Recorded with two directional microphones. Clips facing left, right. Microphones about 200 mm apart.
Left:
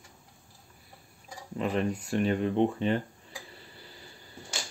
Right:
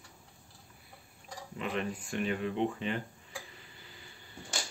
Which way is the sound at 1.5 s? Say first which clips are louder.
Left 6 dB; 40° left (ahead or behind).